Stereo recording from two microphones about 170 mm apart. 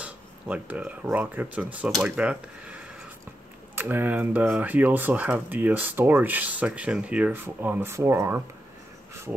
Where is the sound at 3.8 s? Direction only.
10° right (ahead or behind).